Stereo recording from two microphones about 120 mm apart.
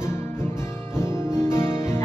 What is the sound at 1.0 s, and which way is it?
Music, 20° left (ahead or behind).